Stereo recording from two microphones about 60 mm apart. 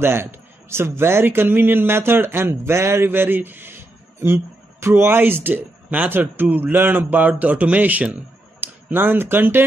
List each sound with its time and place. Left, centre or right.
0.0 s speech: right
8.9 s speech: right